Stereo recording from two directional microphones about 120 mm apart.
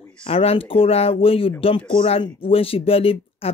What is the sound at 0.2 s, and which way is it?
Speech, 55° left (ahead or behind).